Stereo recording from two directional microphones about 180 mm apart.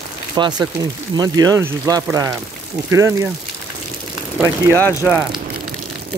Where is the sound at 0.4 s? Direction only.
25° right (ahead or behind).